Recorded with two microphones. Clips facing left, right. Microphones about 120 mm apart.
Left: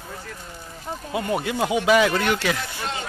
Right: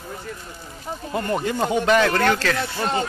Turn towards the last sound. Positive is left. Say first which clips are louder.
# right 7 dB
turn(degrees=-40)  # may be behind; listen again after turning